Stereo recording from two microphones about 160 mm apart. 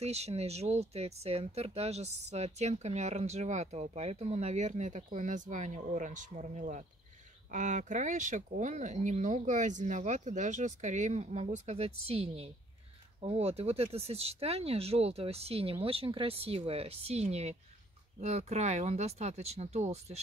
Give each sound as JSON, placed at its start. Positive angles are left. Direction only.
{"t": 0.0, "sound": "speech", "side_deg": -40}